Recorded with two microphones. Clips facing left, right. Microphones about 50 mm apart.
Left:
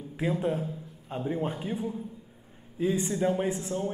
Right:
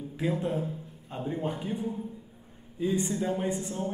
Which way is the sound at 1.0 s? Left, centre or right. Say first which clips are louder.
Left 2 dB; centre.